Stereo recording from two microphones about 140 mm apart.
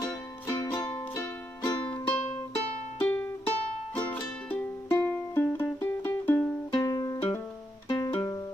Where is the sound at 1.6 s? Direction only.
35° left (ahead or behind).